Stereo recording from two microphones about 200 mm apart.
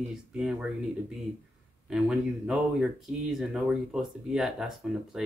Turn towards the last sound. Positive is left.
turn(degrees=0)  # may be behind; listen again after turning